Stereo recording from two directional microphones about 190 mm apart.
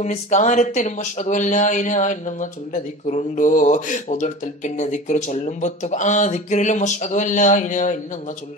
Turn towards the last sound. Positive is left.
turn(degrees=40)  # may be behind; listen again after turning